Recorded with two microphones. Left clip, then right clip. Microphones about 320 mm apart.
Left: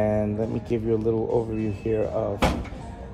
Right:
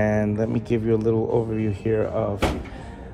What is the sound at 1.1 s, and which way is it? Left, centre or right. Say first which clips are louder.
Speech: right 2 dB; right.